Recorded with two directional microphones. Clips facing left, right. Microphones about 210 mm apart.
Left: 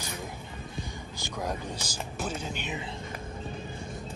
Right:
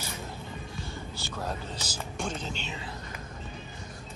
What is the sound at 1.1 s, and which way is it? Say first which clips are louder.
Speech: left 3 dB; 15° left (ahead or behind).